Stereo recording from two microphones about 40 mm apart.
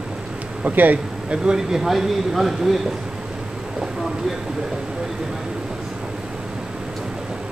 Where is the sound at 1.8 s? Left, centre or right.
Centre.